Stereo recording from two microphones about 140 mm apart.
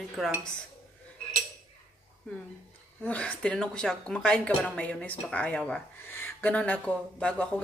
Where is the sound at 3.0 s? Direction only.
10° left (ahead or behind).